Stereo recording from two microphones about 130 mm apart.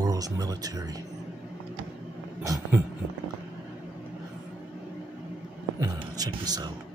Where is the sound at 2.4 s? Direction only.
25° right (ahead or behind).